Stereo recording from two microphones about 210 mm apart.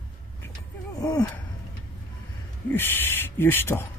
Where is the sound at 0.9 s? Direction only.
15° left (ahead or behind).